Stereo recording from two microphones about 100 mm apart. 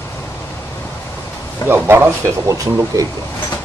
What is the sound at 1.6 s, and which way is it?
Speech, 20° right (ahead or behind).